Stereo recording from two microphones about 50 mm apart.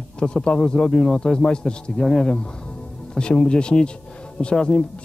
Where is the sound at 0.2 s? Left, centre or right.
Centre.